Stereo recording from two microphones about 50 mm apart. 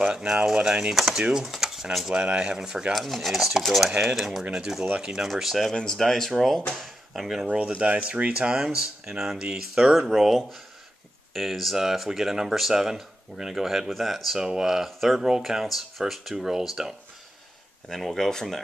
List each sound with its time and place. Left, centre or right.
0.0 s speech: centre
1.1 s a sound: centre
2.1 s speech: right
3.0 s speech: centre
5.3 s speech: centre
7.4 s speech: right
17.8 s speech: centre